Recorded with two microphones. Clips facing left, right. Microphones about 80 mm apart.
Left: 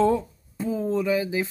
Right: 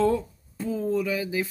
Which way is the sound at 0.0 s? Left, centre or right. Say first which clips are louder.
Left 2 dB; left.